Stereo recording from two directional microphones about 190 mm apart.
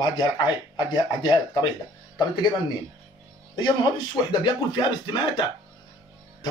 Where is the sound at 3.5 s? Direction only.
25° left (ahead or behind).